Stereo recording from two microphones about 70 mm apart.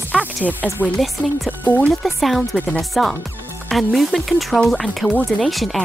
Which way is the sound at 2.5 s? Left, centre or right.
Centre.